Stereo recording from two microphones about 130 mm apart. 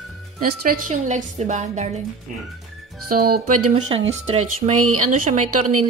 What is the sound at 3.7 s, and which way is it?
Speech, 60° right (ahead or behind).